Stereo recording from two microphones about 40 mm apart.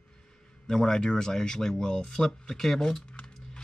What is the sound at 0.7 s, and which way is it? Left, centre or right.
Speech, centre.